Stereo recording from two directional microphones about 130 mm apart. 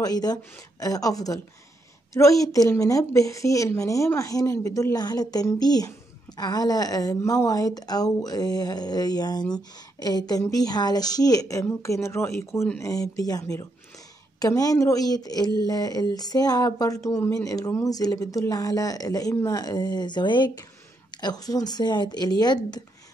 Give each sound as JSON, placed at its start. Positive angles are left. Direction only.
{"t": 0.0, "sound": "speech", "side_deg": 30}